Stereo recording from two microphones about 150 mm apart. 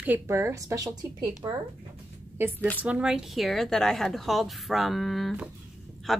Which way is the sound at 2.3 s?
15° right (ahead or behind).